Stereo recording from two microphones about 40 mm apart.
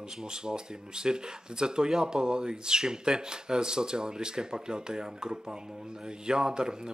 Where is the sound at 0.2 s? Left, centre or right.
Centre.